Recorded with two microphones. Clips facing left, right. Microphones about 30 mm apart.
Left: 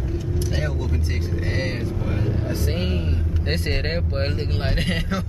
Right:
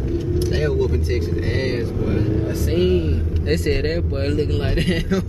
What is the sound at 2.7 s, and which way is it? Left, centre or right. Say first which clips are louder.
A man's voice: right 8 dB; centre.